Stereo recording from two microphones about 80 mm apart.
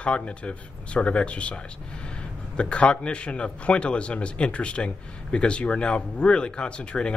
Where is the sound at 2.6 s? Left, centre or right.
Centre.